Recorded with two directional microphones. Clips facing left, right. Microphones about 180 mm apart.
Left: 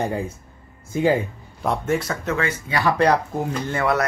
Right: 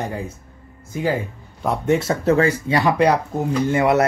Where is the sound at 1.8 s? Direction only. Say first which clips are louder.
Right 6 dB; 25° right (ahead or behind).